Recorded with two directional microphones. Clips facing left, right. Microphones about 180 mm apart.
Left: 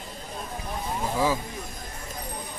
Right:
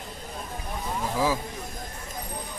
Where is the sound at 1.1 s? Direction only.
5° right (ahead or behind).